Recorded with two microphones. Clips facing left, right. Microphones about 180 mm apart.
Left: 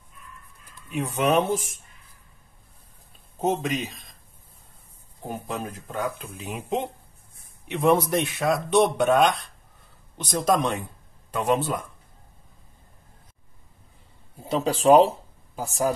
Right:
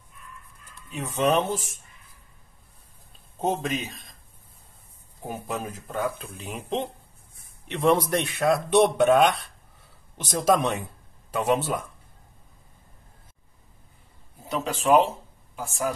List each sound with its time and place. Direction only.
0.8 s speech: 15° left (ahead or behind)
3.3 s speech: centre (ahead or behind)
5.2 s speech: 10° right (ahead or behind)
14.4 s speech: 30° left (ahead or behind)